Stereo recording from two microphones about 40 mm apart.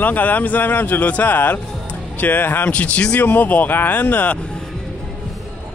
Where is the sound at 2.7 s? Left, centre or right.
Left.